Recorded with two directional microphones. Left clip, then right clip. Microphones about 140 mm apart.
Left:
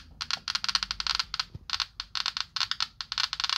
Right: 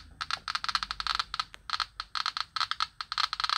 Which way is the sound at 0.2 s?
15° right (ahead or behind).